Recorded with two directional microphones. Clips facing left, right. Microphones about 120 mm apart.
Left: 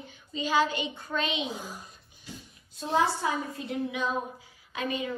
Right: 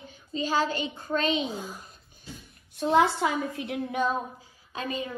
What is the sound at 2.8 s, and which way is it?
Speech, 65° right (ahead or behind).